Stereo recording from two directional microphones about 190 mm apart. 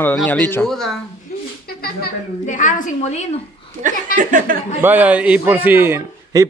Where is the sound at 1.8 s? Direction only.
45° left (ahead or behind).